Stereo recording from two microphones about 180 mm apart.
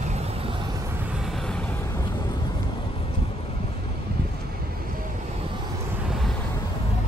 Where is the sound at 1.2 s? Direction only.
Centre (ahead or behind).